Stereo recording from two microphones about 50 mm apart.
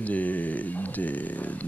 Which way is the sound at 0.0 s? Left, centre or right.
Left.